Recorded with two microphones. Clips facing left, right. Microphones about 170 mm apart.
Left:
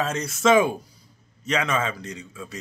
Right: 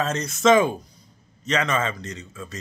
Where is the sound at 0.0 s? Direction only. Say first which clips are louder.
Right 2 dB; 10° left (ahead or behind).